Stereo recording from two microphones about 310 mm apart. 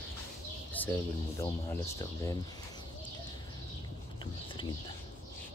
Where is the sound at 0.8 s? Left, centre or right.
Centre.